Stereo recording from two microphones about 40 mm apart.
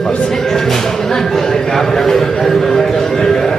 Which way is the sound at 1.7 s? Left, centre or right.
Centre.